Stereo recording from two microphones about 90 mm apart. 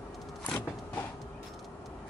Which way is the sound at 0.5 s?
20° left (ahead or behind).